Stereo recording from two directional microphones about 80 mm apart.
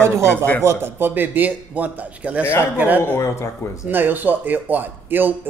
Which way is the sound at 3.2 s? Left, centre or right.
Left.